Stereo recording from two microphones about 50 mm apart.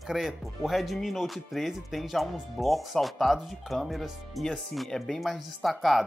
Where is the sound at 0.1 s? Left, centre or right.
Centre.